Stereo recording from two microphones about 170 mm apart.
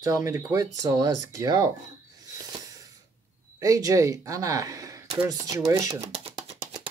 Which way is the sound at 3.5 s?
20° right (ahead or behind).